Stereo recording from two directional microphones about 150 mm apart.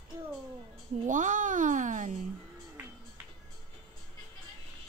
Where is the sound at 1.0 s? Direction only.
60° right (ahead or behind).